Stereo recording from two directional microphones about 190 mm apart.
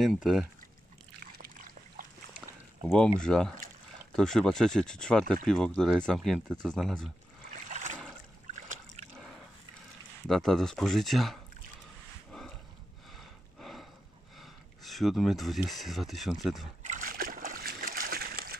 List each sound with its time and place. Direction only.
0.0 s speech: centre (ahead or behind)
2.9 s speech: 5° left (ahead or behind)
7.7 s a sound: 40° right (ahead or behind)
8.5 s trickle: 40° right (ahead or behind)
10.2 s speech: centre (ahead or behind)
12.3 s dog: 5° left (ahead or behind)
13.1 s a sound: centre (ahead or behind)
14.4 s speech: centre (ahead or behind)
16.8 s splash: 45° right (ahead or behind)